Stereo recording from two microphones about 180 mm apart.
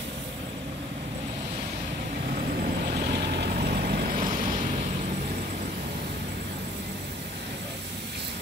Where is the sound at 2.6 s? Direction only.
60° right (ahead or behind).